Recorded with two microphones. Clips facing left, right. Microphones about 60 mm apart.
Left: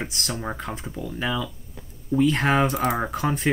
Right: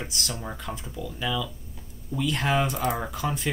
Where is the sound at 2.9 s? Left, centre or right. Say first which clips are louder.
Left 4 dB; left.